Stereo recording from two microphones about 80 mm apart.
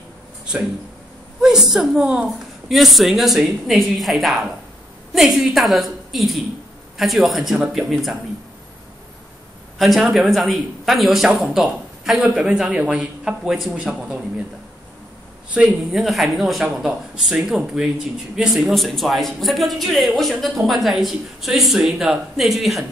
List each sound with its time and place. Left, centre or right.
1.4 s a woman's voice: centre
9.8 s speech: centre
15.9 s speech: centre